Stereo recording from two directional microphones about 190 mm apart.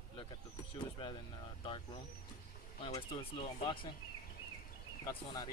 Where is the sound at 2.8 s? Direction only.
25° left (ahead or behind).